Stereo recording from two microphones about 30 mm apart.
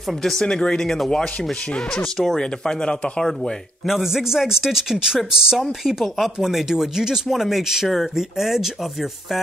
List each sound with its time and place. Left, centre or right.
0.4 s speech: left
0.8 s speech: centre
2.3 s speech: left
3.8 s speech: centre
5.9 s speech: centre